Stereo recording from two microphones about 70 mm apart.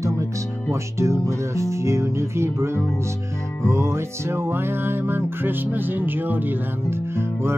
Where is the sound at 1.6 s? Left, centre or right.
Right.